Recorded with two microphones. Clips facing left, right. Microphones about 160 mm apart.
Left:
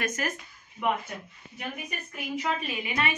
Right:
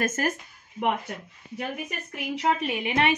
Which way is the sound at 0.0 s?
45° right (ahead or behind).